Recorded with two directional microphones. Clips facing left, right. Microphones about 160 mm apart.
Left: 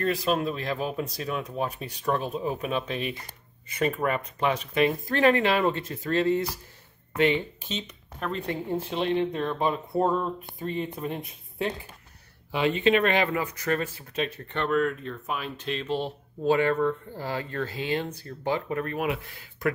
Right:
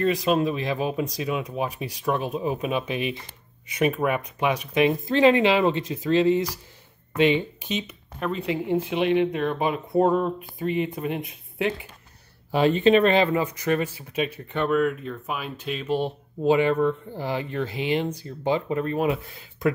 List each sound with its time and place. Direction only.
0.0 s speech: 15° right (ahead or behind)
12.4 s speech: 40° right (ahead or behind)